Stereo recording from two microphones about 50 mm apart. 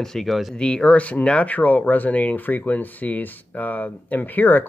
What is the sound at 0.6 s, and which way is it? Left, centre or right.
Speech, centre.